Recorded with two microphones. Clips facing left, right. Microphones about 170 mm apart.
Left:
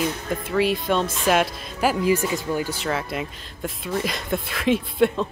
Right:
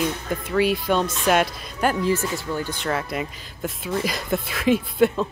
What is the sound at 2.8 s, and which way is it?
Speech, centre (ahead or behind).